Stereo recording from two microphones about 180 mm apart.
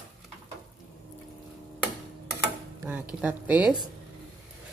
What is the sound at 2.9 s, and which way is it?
Speech, 10° right (ahead or behind).